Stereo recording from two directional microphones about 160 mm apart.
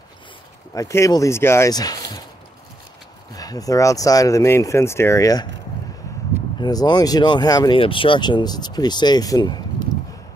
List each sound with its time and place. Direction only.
0.7 s speech: 20° left (ahead or behind)
3.3 s speech: 25° left (ahead or behind)
6.6 s speech: 25° left (ahead or behind)